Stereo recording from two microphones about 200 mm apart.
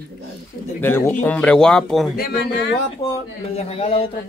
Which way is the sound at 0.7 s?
10° left (ahead or behind).